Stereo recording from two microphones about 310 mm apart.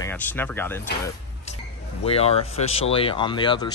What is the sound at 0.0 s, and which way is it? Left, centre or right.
Speech, centre.